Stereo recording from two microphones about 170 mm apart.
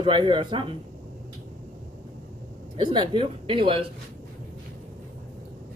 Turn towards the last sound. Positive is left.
turn(degrees=-30)  # may be behind; listen again after turning